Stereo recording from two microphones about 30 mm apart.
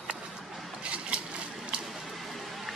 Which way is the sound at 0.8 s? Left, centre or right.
Right.